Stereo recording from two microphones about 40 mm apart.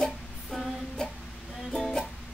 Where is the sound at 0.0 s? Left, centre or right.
Centre.